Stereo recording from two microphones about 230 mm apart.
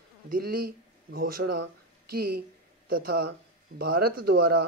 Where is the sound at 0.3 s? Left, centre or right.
Right.